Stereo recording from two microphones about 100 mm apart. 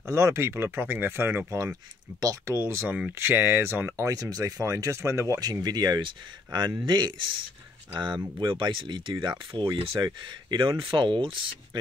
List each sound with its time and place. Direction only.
0.0 s speech: 30° right (ahead or behind)
1.6 s speech: 35° right (ahead or behind)
8.4 s speech: 50° right (ahead or behind)
9.5 s speech: 60° right (ahead or behind)